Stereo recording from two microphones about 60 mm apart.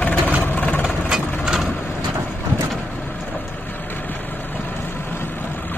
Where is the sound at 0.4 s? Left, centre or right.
Left.